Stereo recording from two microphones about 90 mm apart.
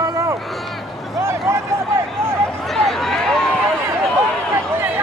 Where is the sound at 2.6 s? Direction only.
5° left (ahead or behind).